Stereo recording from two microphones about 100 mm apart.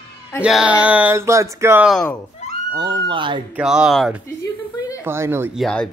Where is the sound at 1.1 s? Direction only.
30° right (ahead or behind).